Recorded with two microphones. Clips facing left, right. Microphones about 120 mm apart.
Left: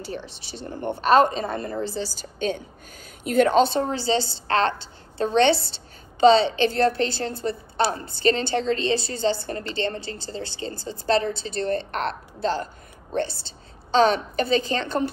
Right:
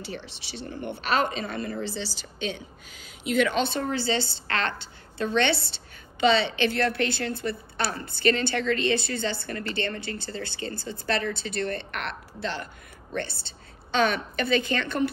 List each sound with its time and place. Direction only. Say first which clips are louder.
0.2 s a woman's voice: left 2 dB; 45° left (ahead or behind)
13.9 s a woman's voice: left 5 dB; 35° left (ahead or behind)